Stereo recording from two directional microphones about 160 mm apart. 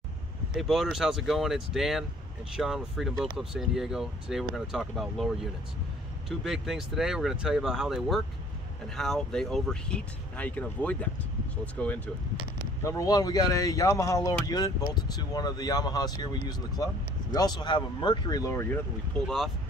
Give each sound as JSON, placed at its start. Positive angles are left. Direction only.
{"t": 0.6, "sound": "speech", "side_deg": 0}
{"t": 12.8, "sound": "speech", "side_deg": 20}
{"t": 19.2, "sound": "speech", "side_deg": 0}